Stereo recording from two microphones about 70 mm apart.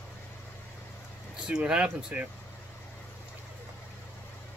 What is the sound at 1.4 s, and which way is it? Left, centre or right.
Speech, centre.